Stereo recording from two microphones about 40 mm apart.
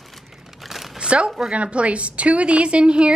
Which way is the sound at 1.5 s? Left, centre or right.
Right.